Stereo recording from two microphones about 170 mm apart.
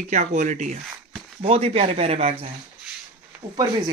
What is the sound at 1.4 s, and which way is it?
Speech, 35° right (ahead or behind).